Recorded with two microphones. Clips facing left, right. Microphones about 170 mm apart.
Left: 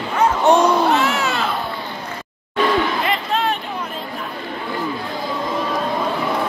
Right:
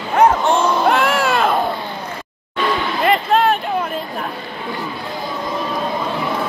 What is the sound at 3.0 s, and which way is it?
Crowd, 50° right (ahead or behind).